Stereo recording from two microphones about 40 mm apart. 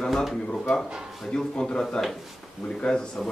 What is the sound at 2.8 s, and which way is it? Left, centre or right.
Speech, left.